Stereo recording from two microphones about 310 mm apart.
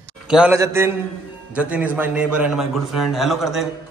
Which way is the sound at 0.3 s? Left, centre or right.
Centre.